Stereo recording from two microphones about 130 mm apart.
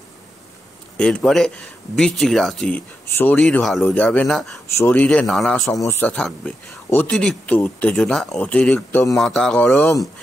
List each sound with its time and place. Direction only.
0.9 s speech: 10° left (ahead or behind)
4.7 s speech: 15° left (ahead or behind)
5.8 s speech: 20° left (ahead or behind)
6.1 s speech: 5° left (ahead or behind)